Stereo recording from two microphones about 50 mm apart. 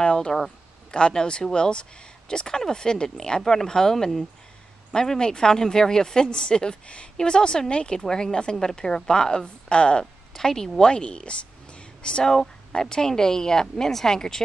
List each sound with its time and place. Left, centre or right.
0.0 s a sound: centre
0.9 s speech: centre
10.3 s a woman's voice: centre